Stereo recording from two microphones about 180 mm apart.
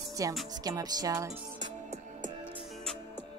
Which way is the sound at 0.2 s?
20° right (ahead or behind).